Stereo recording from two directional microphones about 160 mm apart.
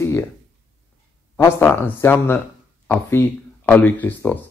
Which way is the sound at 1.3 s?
15° left (ahead or behind).